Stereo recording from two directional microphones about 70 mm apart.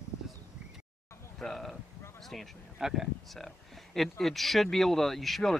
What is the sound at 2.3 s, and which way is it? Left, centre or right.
Speech, centre.